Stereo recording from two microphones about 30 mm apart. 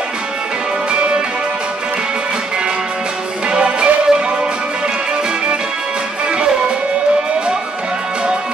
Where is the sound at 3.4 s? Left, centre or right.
Right.